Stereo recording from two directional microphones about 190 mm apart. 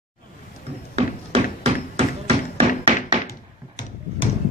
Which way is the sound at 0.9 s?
35° right (ahead or behind).